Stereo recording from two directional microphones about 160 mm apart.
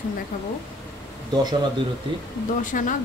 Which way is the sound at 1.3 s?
25° right (ahead or behind).